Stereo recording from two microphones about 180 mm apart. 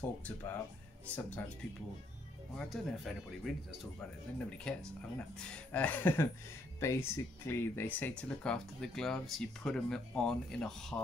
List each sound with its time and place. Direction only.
0.0 s speech: 10° left (ahead or behind)
2.5 s speech: centre (ahead or behind)